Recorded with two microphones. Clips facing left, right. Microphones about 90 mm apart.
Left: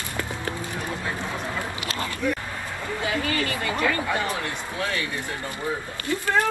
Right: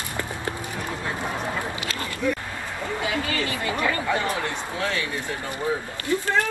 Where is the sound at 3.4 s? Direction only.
25° right (ahead or behind).